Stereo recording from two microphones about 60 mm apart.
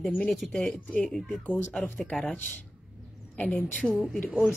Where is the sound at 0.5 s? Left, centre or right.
Centre.